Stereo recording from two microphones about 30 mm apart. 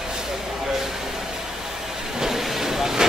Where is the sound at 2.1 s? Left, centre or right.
Centre.